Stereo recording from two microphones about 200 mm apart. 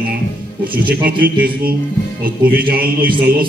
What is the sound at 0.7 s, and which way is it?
Speech, 50° right (ahead or behind).